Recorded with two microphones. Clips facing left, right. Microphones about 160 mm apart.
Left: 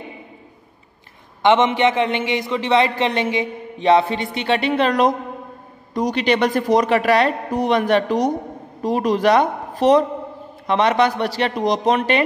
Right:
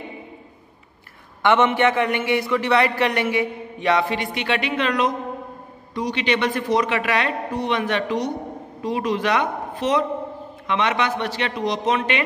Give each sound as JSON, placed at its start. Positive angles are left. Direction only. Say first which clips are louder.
{"t": 1.4, "sound": "a man's voice", "louder": "left 2 dB", "side_deg": 20}